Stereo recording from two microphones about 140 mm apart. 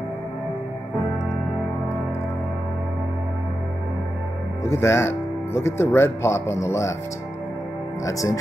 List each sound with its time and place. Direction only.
4.6 s speech: 20° left (ahead or behind)
8.0 s speech: 25° left (ahead or behind)